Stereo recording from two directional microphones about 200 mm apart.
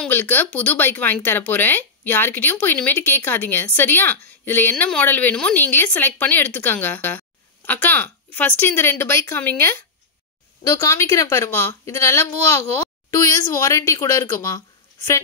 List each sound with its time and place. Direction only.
0.0 s speech: 10° left (ahead or behind)